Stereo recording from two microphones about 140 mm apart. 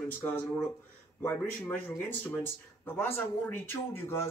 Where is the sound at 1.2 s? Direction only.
15° left (ahead or behind).